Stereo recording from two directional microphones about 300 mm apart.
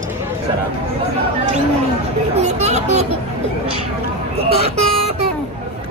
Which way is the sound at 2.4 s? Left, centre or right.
Right.